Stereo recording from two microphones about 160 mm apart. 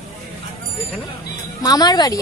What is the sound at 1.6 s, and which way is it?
Speech, 25° left (ahead or behind).